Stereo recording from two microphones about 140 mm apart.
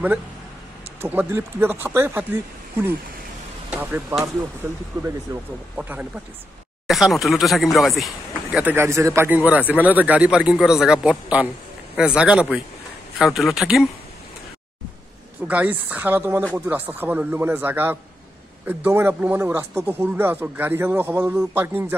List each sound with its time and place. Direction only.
1.0 s speech: 15° right (ahead or behind)
3.7 s speech: 10° right (ahead or behind)
5.8 s speech: 10° right (ahead or behind)
8.7 s speech: 20° right (ahead or behind); by 13.8 s centre (ahead or behind)
15.4 s speech: 10° right (ahead or behind)